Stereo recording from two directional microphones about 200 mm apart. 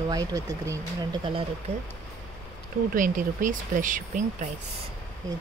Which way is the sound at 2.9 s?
40° right (ahead or behind).